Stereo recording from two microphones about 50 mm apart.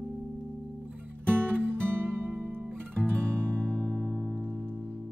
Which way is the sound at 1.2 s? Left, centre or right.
Right.